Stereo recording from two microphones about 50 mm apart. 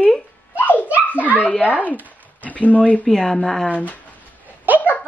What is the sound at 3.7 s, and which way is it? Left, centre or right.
Speech, left.